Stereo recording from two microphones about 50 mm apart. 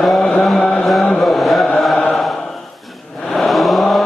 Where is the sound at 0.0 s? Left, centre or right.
Centre.